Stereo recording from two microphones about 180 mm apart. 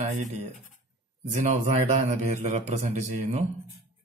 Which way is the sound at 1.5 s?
40° right (ahead or behind).